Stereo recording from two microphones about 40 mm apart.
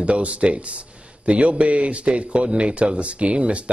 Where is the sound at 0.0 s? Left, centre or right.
Right.